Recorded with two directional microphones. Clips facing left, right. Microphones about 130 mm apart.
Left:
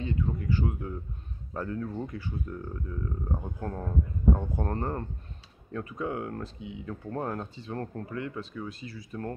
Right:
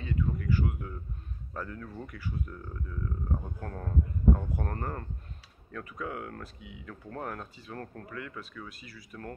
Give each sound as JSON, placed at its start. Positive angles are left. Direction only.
{"t": 0.0, "sound": "speech", "side_deg": 25}